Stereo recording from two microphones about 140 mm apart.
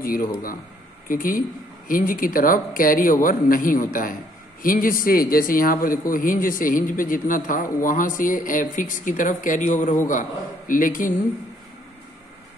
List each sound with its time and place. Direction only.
0.0 s a man's voice: 90° left; by 9.9 s 60° left (ahead or behind)
10.7 s speech: 75° left (ahead or behind)